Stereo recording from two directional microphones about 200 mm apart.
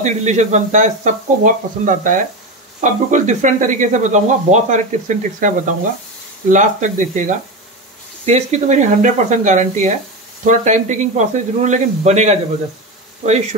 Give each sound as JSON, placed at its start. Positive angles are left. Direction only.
{"t": 0.0, "sound": "speech", "side_deg": -35}
{"t": 6.5, "sound": "speech", "side_deg": -40}